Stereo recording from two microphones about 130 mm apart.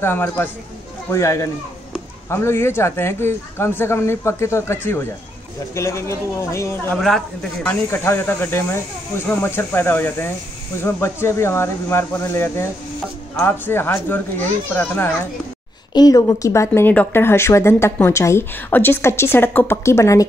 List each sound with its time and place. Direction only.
0.0 s speech: 15° left (ahead or behind)
7.0 s a man's voice: centre (ahead or behind)
7.6 s speech: 15° left (ahead or behind)
15.9 s speech: 30° left (ahead or behind)